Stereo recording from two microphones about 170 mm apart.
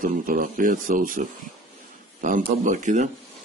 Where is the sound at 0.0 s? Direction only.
50° right (ahead or behind).